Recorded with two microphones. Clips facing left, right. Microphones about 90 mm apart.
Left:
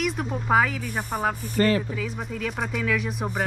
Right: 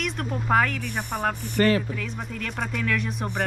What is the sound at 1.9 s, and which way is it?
Speech, 5° left (ahead or behind).